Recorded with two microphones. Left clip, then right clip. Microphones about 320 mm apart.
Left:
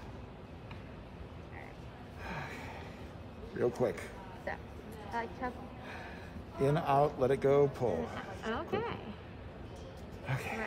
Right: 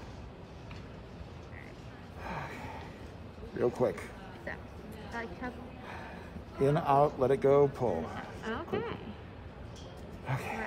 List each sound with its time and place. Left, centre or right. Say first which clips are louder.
2.2 s snort: right 2 dB; centre
3.5 s speech: right 2 dB; centre
5.1 s a sound: left 2 dB; centre
6.6 s speech: right 3 dB; centre
8.2 s a sound: even; centre
10.2 s cat: right 2 dB; centre